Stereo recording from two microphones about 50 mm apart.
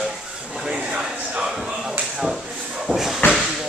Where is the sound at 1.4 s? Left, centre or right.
Centre.